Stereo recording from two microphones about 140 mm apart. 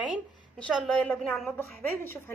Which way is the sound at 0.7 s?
Centre (ahead or behind).